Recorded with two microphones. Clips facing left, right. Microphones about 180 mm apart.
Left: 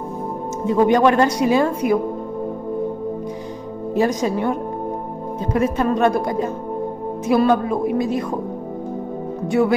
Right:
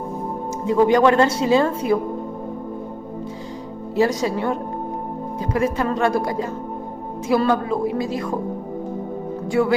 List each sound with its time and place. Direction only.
0.7 s a woman's voice: 20° left (ahead or behind)
3.9 s a woman's voice: 20° left (ahead or behind)
5.5 s music: 20° left (ahead or behind)
9.5 s music: 20° left (ahead or behind)